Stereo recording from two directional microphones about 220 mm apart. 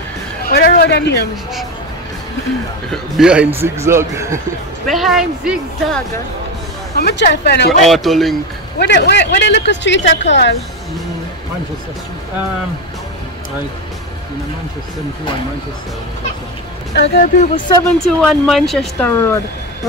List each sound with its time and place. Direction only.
0.5 s a man's voice: 45° left (ahead or behind)
2.9 s a man's voice: 5° right (ahead or behind)
4.8 s speech: centre (ahead or behind)
7.0 s speech: 45° left (ahead or behind)
7.8 s speech: centre (ahead or behind)
8.7 s speech: 50° left (ahead or behind)
16.9 s speech: 45° left (ahead or behind)
17.8 s speech: 5° left (ahead or behind)